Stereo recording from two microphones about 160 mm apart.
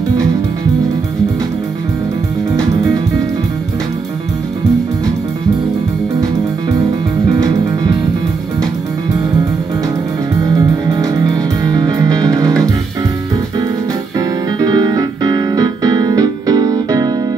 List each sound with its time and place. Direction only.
2.5 s music: 20° right (ahead or behind)
7.2 s music: 25° right (ahead or behind)
10.5 s music: 25° right (ahead or behind)
14.6 s music: 25° right (ahead or behind)